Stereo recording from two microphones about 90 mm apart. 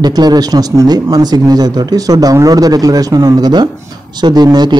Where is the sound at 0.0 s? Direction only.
50° right (ahead or behind).